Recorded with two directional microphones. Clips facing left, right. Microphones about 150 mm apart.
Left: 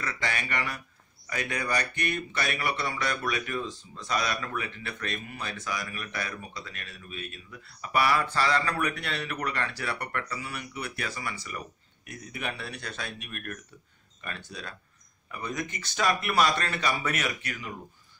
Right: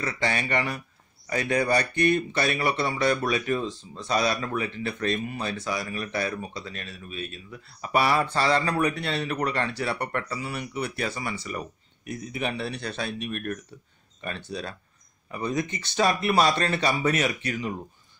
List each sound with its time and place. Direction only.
0.0 s speech: 30° right (ahead or behind)